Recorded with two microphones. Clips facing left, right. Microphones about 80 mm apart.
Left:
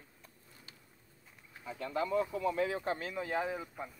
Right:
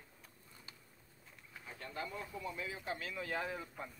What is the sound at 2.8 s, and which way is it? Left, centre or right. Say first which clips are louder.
Speech: left 6 dB; left.